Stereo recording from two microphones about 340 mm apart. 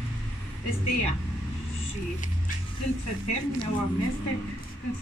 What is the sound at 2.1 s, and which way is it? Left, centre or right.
Speech, left.